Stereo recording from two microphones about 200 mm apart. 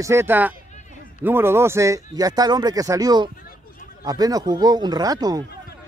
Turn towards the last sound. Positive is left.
turn(degrees=-20)  # may be behind; listen again after turning